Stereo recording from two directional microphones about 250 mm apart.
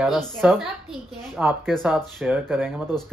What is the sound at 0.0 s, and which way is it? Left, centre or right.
Speech, centre.